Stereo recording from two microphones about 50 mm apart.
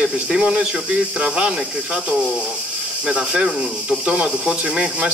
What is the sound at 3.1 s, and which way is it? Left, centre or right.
Speech, centre.